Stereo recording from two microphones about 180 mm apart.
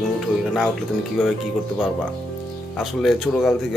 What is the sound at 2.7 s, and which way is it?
Speech, centre (ahead or behind).